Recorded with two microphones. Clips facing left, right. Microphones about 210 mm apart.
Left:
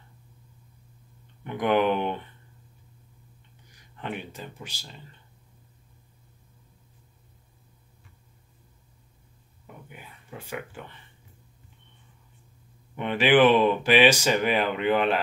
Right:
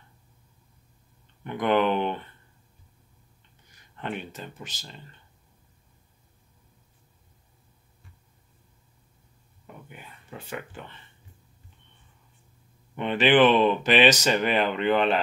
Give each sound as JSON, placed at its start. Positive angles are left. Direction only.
{"t": 1.4, "sound": "speech", "side_deg": 10}
{"t": 4.0, "sound": "speech", "side_deg": 10}
{"t": 9.8, "sound": "speech", "side_deg": 10}
{"t": 12.9, "sound": "speech", "side_deg": 10}